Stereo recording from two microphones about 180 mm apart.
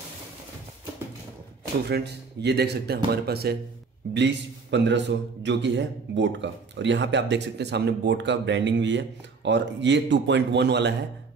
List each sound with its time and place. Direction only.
1.9 s speech: 65° right (ahead or behind)
4.1 s a man's voice: 75° right (ahead or behind)